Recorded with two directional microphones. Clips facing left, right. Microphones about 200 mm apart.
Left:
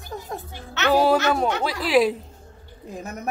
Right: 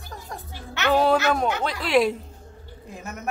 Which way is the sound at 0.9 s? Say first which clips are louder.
Left 1 dB; 5° left (ahead or behind).